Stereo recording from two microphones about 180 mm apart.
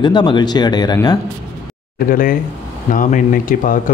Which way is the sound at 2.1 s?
50° left (ahead or behind).